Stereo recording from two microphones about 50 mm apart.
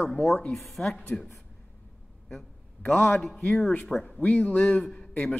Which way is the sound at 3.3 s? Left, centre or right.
Centre.